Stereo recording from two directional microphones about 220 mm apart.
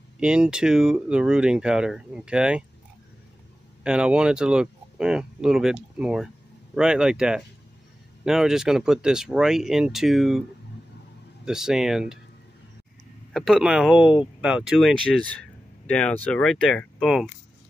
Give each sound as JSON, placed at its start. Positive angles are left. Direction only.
{"t": 0.2, "sound": "speech", "side_deg": -5}
{"t": 3.8, "sound": "speech", "side_deg": -5}
{"t": 11.4, "sound": "speech", "side_deg": 0}
{"t": 13.3, "sound": "speech", "side_deg": 0}